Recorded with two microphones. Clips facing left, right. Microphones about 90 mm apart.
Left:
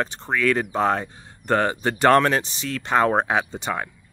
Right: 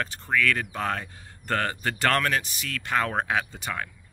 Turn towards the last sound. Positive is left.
turn(degrees=25)  # may be behind; listen again after turning